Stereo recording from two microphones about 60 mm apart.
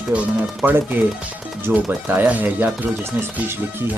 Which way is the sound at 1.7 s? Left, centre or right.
Right.